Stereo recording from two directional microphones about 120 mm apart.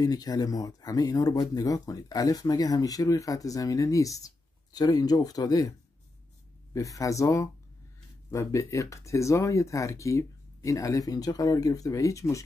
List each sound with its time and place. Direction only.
0.0 s speech: 30° left (ahead or behind)